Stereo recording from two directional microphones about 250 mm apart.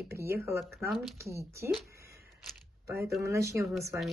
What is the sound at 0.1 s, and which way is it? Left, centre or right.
Speech, centre.